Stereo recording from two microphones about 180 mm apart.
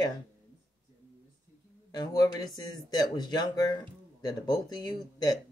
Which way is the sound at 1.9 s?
20° left (ahead or behind).